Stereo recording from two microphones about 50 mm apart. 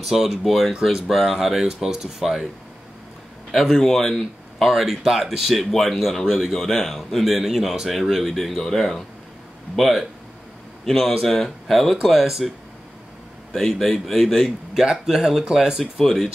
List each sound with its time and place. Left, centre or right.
0.0 s speech: centre
3.5 s speech: centre
15.8 s speech: centre